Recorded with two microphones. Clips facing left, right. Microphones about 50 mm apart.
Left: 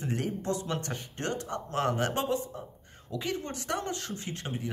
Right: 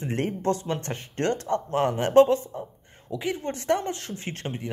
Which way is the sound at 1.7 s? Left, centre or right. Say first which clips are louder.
Right 3 dB; right.